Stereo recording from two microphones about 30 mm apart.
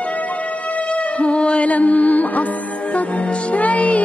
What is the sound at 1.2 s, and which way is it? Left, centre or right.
Music, left.